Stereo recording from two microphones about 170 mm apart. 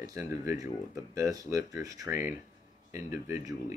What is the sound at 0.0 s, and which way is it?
Speech, 15° right (ahead or behind).